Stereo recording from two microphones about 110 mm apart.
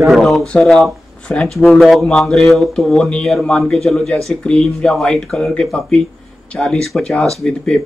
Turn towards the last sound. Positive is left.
turn(degrees=5)  # may be behind; listen again after turning